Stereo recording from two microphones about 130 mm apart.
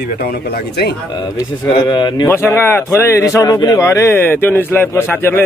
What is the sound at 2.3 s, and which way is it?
A man's voice, 20° left (ahead or behind).